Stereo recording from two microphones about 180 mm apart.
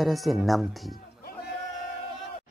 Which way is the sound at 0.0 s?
Centre (ahead or behind).